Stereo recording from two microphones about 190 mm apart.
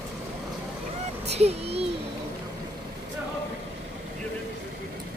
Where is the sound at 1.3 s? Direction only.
35° right (ahead or behind).